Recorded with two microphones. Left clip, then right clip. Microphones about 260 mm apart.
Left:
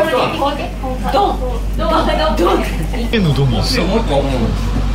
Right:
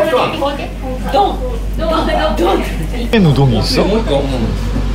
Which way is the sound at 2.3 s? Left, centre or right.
Centre.